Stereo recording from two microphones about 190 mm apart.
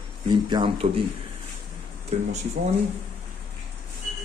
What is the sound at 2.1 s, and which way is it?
Speech, 35° right (ahead or behind).